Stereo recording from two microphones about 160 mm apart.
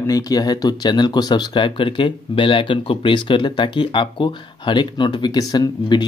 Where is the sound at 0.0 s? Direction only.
20° left (ahead or behind).